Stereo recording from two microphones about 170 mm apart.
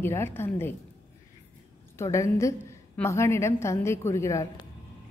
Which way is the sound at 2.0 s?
15° left (ahead or behind).